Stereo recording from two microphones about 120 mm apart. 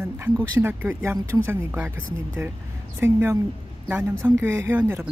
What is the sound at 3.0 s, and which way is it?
Speech, 20° right (ahead or behind).